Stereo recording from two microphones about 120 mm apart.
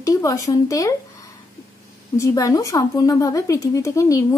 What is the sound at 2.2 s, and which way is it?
A woman's voice, 25° left (ahead or behind).